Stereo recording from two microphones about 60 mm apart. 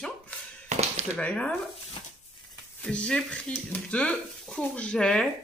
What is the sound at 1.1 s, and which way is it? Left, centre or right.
Speech, centre.